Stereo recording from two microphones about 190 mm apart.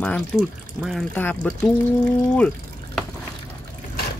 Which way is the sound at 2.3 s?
5° left (ahead or behind).